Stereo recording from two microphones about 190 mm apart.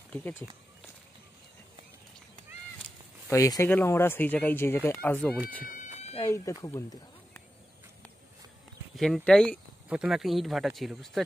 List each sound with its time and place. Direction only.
0.1 s speech: 10° left (ahead or behind)
3.3 s speech: 15° left (ahead or behind)
5.8 s cat: 35° left (ahead or behind)
6.1 s speech: 15° left (ahead or behind)
8.9 s speech: centre (ahead or behind)